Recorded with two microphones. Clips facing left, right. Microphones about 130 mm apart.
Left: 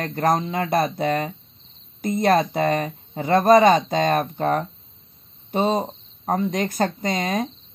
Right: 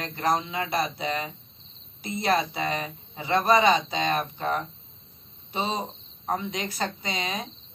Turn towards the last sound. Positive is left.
turn(degrees=45)  # may be behind; listen again after turning